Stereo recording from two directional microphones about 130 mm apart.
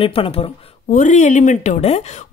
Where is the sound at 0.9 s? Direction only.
70° left (ahead or behind).